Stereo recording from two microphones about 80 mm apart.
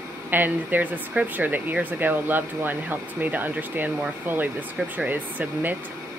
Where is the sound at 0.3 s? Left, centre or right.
Right.